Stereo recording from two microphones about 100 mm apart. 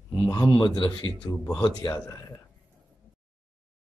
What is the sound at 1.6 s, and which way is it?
Speech, 40° left (ahead or behind).